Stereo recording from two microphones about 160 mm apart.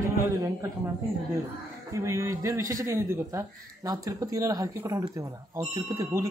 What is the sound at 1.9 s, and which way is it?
A man's voice, 20° right (ahead or behind).